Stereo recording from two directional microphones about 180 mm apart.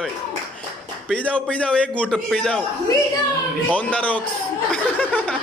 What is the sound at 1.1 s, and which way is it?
A man's voice, 5° left (ahead or behind).